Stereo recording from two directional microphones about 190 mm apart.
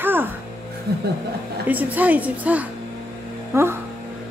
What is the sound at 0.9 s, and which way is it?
Speech, 60° right (ahead or behind).